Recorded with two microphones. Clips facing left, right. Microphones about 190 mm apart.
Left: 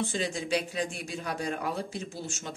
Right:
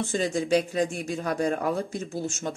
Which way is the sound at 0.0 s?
45° right (ahead or behind).